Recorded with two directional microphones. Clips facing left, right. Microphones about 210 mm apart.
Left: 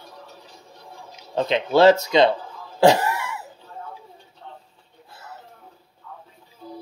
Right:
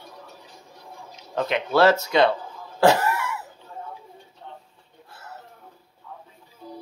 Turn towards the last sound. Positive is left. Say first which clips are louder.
# left 1 dB
turn(degrees=5)  # may be behind; listen again after turning